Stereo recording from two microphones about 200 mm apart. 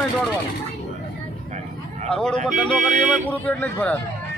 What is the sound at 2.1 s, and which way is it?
Speech, 5° left (ahead or behind).